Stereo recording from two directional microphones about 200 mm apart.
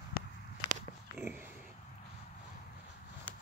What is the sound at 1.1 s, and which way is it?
Dog, 10° right (ahead or behind).